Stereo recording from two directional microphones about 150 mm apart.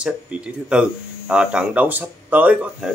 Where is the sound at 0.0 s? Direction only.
5° right (ahead or behind).